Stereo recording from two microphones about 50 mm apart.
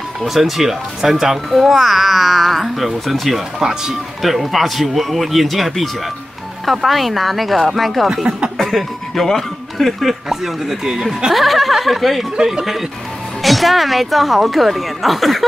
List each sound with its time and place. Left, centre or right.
0.2 s a child's voice: centre
4.2 s a child's voice: centre
8.1 s speech: centre
8.5 s a child's voice: centre